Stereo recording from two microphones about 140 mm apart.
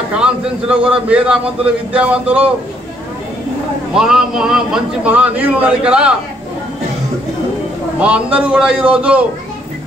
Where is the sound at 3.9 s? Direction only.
5° right (ahead or behind).